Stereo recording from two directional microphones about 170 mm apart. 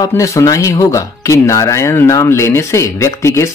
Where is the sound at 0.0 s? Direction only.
20° left (ahead or behind).